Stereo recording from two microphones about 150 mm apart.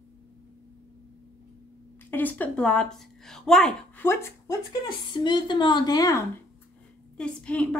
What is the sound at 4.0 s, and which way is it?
Speech, 15° left (ahead or behind).